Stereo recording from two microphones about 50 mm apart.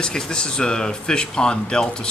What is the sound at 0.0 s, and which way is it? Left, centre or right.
Speech, centre.